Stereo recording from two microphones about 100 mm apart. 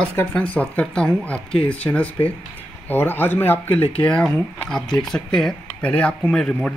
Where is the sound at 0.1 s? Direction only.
15° left (ahead or behind).